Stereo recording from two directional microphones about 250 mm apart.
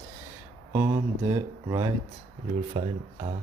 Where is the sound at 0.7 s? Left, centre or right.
Centre.